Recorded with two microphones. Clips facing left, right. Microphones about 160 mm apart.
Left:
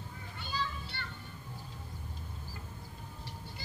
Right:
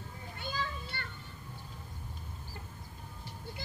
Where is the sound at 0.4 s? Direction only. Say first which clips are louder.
Even; 50° right (ahead or behind).